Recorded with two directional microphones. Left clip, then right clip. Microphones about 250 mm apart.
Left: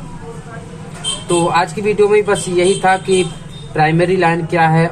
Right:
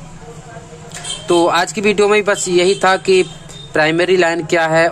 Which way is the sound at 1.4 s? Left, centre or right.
Right.